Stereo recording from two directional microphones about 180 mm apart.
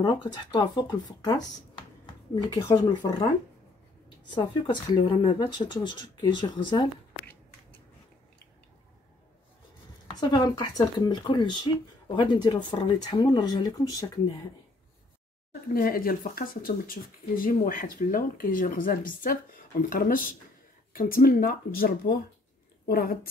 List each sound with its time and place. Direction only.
0.0 s speech: 25° left (ahead or behind)
4.3 s speech: 25° left (ahead or behind)
10.3 s speech: 20° left (ahead or behind)
15.7 s a woman's voice: 55° left (ahead or behind)